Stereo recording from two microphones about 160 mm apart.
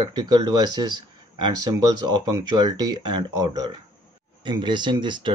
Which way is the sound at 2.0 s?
25° right (ahead or behind).